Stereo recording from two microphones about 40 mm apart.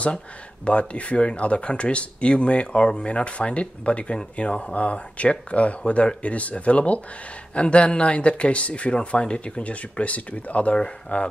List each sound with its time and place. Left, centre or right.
0.7 s speech: left